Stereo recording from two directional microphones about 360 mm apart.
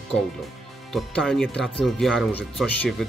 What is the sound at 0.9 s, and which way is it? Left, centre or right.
Speech, centre.